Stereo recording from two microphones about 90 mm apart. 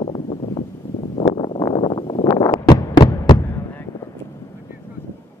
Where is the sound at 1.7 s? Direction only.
60° left (ahead or behind).